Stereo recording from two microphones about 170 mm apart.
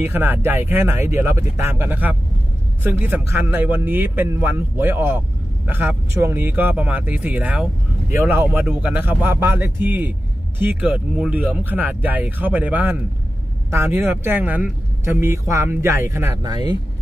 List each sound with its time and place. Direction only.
0.0 s speech: 10° right (ahead or behind)